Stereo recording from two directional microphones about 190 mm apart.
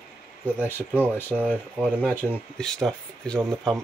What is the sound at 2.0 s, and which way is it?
Speech, 10° left (ahead or behind).